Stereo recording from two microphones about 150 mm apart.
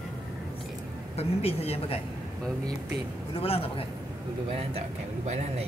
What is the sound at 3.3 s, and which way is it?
Speech, 40° left (ahead or behind).